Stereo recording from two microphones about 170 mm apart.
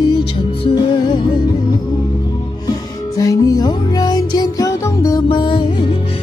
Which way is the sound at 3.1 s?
20° left (ahead or behind).